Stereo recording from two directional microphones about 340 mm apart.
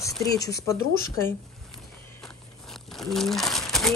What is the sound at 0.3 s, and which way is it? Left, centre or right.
Speech, left.